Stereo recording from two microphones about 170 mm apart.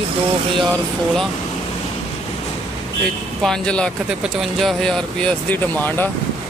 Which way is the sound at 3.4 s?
5° left (ahead or behind).